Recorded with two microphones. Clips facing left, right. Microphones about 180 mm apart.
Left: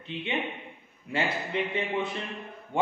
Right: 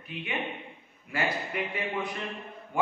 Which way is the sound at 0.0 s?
25° left (ahead or behind).